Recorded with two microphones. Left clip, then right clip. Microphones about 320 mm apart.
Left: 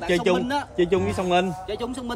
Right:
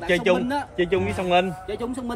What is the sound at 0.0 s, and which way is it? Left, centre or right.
A man's voice, left.